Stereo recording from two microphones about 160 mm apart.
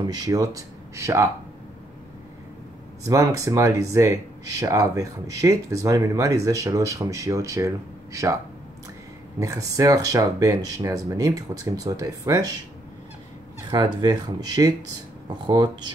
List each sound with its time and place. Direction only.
0.0 s speech: 20° right (ahead or behind)
3.1 s speech: 20° right (ahead or behind)
9.4 s speech: 20° right (ahead or behind)
13.7 s speech: 25° right (ahead or behind)